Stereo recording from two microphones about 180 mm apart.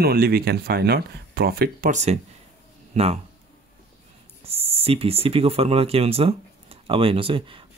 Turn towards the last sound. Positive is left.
turn(degrees=-30)  # may be behind; listen again after turning